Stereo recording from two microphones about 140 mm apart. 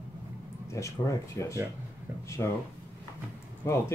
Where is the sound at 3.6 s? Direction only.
20° left (ahead or behind).